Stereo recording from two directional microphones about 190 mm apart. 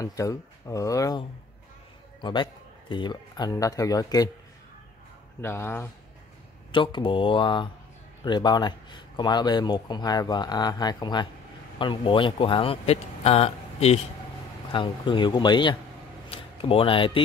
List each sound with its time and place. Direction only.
0.0 s speech: 15° left (ahead or behind)
2.2 s speech: 25° left (ahead or behind)
5.4 s speech: 10° left (ahead or behind)
6.7 s speech: 25° left (ahead or behind)